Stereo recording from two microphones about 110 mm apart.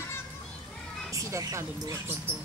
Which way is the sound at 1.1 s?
30° right (ahead or behind).